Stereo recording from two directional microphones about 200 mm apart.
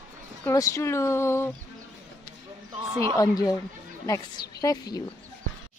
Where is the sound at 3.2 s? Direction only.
20° left (ahead or behind).